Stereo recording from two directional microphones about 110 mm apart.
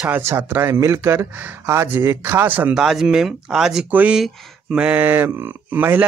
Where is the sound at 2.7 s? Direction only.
5° right (ahead or behind).